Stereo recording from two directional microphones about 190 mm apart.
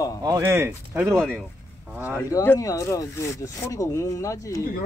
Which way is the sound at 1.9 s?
10° right (ahead or behind).